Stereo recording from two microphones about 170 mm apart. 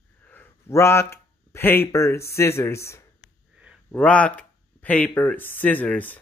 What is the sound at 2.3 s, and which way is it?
Speech, 15° left (ahead or behind).